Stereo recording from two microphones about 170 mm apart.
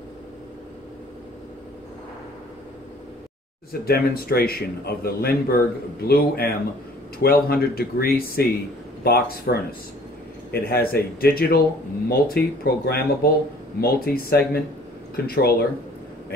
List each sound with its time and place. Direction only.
3.8 s speech: 60° left (ahead or behind)